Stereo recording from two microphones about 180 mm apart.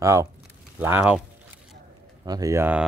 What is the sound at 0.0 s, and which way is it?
Speech, 15° right (ahead or behind).